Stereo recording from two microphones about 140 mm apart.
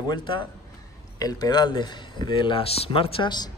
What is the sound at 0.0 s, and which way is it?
Speech, 35° left (ahead or behind).